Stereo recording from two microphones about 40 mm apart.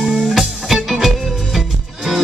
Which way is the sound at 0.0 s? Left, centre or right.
Right.